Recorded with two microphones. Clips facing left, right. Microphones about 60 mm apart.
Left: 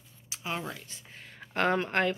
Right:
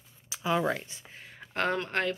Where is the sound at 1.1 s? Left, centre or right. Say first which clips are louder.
Left 1 dB; centre.